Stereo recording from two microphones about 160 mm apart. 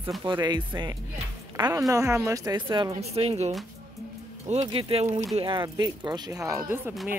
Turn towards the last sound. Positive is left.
turn(degrees=-15)  # may be behind; listen again after turning